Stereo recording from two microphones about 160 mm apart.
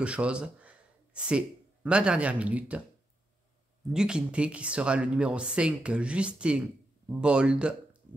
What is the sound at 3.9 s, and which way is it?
Speech, 5° right (ahead or behind).